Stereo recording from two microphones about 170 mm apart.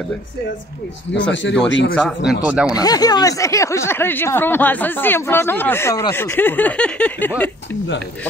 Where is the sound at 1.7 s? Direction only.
90° left.